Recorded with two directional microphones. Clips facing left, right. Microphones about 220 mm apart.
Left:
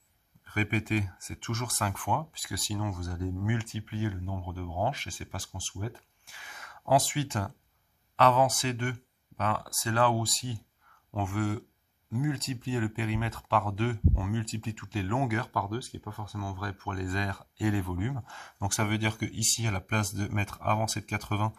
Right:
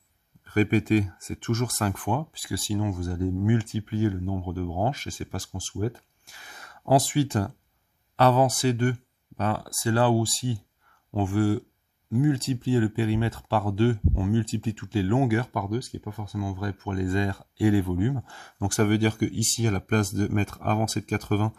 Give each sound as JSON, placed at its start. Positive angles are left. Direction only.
{"t": 0.5, "sound": "speech", "side_deg": -40}